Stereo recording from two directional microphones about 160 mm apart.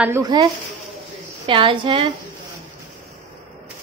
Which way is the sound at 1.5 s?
30° right (ahead or behind).